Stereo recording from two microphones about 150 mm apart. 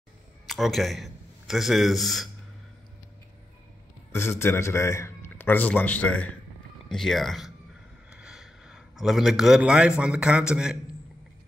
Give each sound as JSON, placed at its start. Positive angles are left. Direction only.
{"t": 0.5, "sound": "a man's voice", "side_deg": 0}
{"t": 4.1, "sound": "a man's voice", "side_deg": 15}